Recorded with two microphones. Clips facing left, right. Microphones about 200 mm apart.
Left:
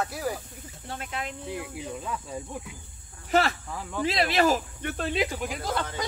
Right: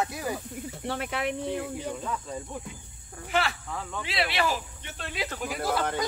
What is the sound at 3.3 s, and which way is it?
Speech, 40° left (ahead or behind).